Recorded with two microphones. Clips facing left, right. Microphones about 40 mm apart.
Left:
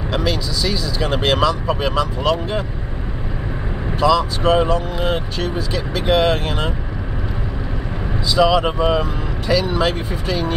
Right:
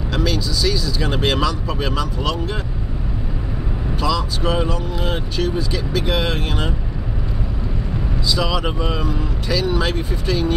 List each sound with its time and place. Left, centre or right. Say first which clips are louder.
0.1 s speech: even; centre
4.0 s speech: left 6 dB; centre
5.4 s speech: right 1 dB; centre
8.3 s speech: left 7 dB; centre